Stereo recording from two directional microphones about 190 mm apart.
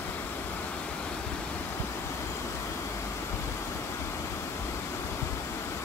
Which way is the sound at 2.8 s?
15° left (ahead or behind).